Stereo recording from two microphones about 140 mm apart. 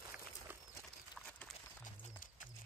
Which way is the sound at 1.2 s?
5° left (ahead or behind).